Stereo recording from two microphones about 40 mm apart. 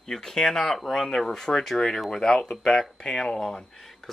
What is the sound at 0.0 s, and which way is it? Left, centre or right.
Speech, centre.